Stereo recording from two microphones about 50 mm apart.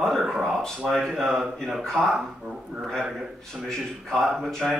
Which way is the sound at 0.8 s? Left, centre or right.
Centre.